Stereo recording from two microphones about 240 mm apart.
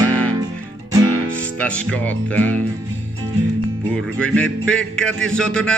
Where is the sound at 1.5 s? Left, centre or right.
Centre.